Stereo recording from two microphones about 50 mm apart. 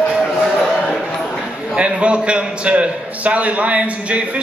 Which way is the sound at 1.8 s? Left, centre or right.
Right.